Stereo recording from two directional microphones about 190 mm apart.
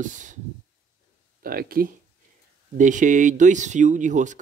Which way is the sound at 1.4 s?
50° right (ahead or behind).